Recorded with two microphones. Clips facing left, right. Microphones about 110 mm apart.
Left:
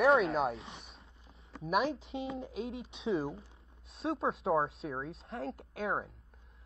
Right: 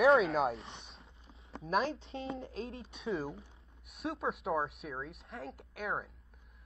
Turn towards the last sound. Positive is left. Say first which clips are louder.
# left 3 dB
turn(degrees=25)  # may be behind; listen again after turning